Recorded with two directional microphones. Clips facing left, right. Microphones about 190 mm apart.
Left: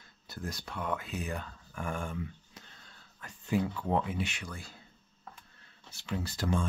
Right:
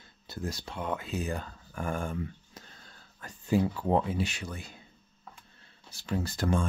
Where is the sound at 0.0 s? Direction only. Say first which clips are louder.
Right 4 dB; 25° right (ahead or behind).